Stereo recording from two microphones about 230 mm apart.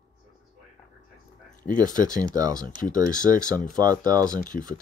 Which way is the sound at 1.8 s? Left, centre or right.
Centre.